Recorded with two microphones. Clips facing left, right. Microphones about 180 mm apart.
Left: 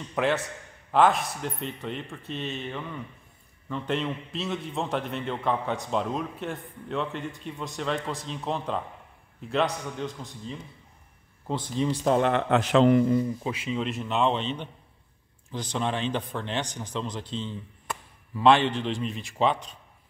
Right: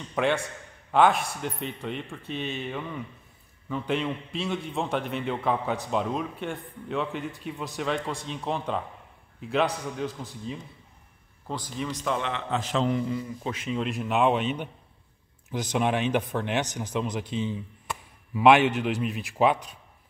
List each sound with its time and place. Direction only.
0.1 s a man's voice: centre (ahead or behind)
11.4 s a man's voice: 25° left (ahead or behind); by 13.0 s 70° left (ahead or behind)
13.4 s speech: 10° left (ahead or behind); by 19.7 s 5° right (ahead or behind)